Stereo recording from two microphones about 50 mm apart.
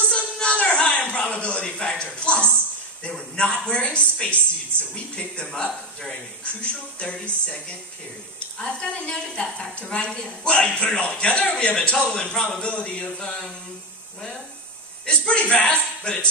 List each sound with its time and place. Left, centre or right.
0.1 s a sound: centre
3.0 s a man's voice: left
6.4 s a man's voice: left
15.0 s a man's voice: left